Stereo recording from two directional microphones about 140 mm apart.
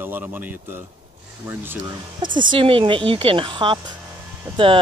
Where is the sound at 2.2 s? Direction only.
35° right (ahead or behind).